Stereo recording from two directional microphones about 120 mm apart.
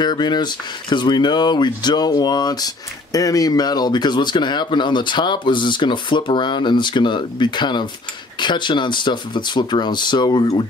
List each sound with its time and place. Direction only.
0.0 s speech: 40° left (ahead or behind)